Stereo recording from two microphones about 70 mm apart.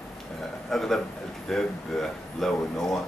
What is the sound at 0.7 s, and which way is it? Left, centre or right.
Speech, centre.